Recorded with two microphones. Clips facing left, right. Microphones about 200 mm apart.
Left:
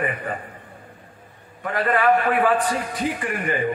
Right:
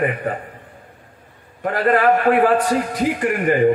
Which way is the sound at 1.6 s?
45° right (ahead or behind).